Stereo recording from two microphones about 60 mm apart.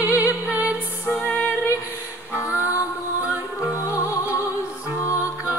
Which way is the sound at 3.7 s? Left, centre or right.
Left.